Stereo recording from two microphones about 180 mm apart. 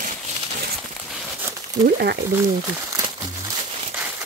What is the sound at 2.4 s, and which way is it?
Crumpling, 20° right (ahead or behind).